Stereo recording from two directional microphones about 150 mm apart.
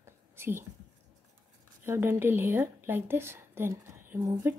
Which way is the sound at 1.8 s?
15° right (ahead or behind).